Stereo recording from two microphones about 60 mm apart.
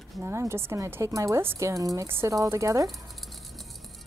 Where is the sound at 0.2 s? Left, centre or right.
Right.